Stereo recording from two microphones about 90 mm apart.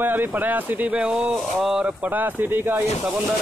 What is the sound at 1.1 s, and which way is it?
Speech, 5° right (ahead or behind).